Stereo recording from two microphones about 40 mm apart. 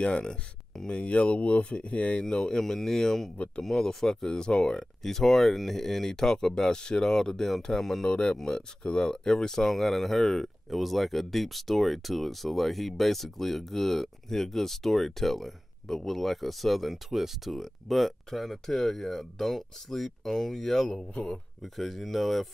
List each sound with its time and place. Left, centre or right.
0.0 s speech: left
2.2 s speech: centre
5.0 s speech: centre
16.9 s speech: centre
17.6 s speech: centre